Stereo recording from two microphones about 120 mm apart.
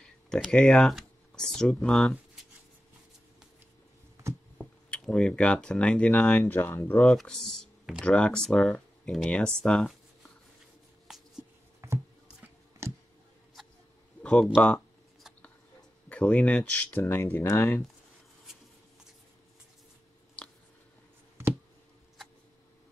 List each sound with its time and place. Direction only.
0.0 s speech: 5° left (ahead or behind)
4.6 s speech: 5° left (ahead or behind)
7.1 s speech: 5° left (ahead or behind)
11.8 s a sound: 20° right (ahead or behind)
14.2 s speech: 10° left (ahead or behind)
16.1 s speech: 10° left (ahead or behind)
20.4 s a sound: 10° left (ahead or behind)